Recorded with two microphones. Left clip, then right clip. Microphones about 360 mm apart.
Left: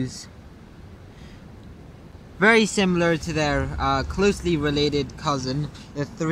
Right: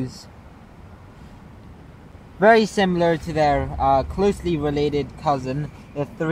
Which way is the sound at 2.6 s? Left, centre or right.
Centre.